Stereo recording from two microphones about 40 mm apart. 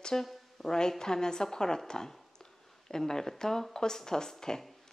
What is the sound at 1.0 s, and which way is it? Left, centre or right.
Speech, centre.